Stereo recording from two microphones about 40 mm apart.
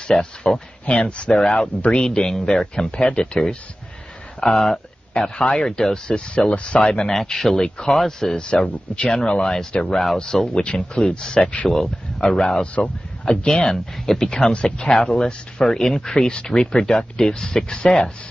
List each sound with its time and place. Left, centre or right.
0.1 s speech: centre
0.8 s speech: left
1.3 s speech: centre
1.9 s speech: left
7.1 s speech: centre